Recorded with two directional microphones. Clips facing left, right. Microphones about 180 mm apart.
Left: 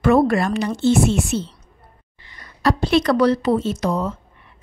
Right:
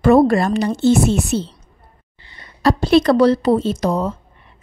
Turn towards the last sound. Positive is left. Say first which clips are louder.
# right 3 dB
turn(degrees=-35)  # may be behind; listen again after turning